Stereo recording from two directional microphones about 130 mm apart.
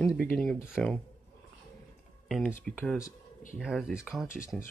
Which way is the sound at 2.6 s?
5° left (ahead or behind).